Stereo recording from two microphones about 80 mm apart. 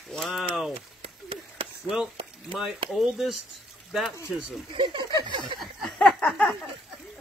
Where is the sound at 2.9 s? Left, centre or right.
Centre.